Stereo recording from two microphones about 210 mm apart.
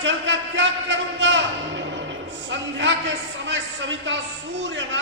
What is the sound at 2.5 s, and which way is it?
A man's voice, 60° right (ahead or behind).